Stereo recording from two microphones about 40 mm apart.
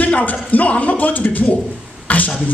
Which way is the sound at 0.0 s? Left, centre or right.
Left.